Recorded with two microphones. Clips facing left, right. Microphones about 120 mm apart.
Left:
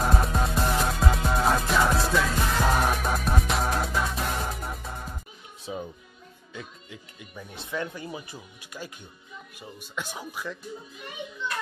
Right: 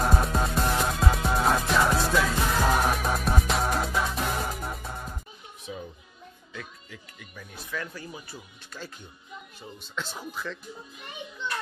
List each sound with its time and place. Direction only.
0.0 s music: centre (ahead or behind)
5.7 s music: 20° left (ahead or behind)
9.6 s speech: 10° left (ahead or behind)